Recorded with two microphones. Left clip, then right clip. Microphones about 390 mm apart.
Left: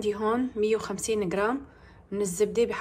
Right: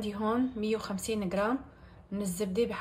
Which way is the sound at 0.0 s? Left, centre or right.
Centre.